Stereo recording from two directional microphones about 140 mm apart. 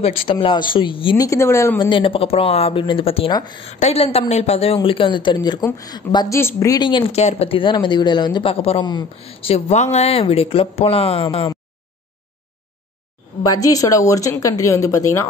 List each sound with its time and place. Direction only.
0.0 s speech: 40° left (ahead or behind)
1.2 s a woman's voice: 20° left (ahead or behind)
1.8 s a woman's voice: 35° left (ahead or behind)
7.2 s speech: 50° left (ahead or behind); by 8.5 s 30° left (ahead or behind)
8.5 s speech: 45° left (ahead or behind)
13.5 s a woman's voice: 25° left (ahead or behind)